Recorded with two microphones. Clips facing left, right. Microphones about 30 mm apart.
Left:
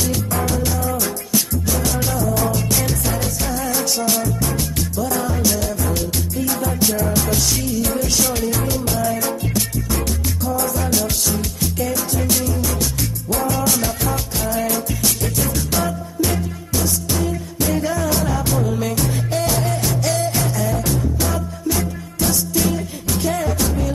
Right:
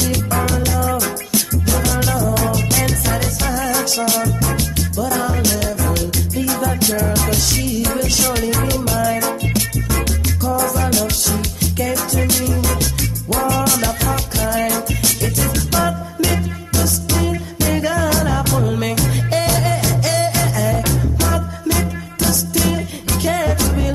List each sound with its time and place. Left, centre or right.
0.3 s music: right
12.3 s music: right